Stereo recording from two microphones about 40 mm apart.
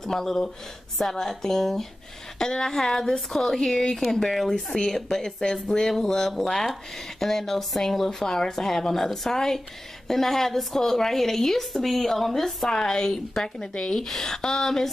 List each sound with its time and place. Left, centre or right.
0.0 s speech: centre
12.7 s speech: centre